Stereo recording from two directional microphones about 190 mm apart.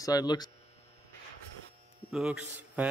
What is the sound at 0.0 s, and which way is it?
Speech, 20° left (ahead or behind).